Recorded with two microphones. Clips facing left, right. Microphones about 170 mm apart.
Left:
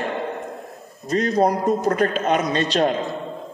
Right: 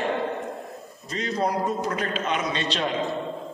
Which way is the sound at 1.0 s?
45° left (ahead or behind).